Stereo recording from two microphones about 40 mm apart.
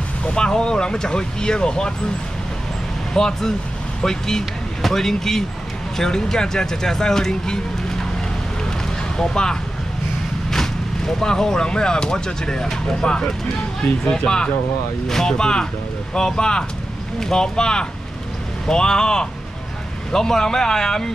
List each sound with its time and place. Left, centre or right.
0.2 s speech: centre
3.1 s speech: centre
9.1 s speech: centre